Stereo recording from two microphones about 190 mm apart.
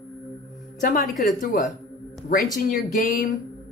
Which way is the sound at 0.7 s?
50° left (ahead or behind).